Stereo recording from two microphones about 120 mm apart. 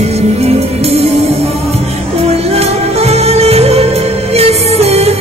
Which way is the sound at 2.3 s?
60° right (ahead or behind).